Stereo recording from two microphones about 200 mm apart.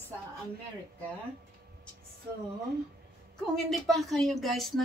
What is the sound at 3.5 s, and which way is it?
Speech, centre (ahead or behind).